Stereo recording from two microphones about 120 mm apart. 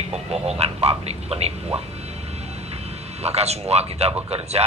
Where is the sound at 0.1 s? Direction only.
60° right (ahead or behind).